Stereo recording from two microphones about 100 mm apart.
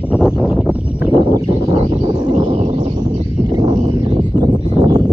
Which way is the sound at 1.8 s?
45° right (ahead or behind).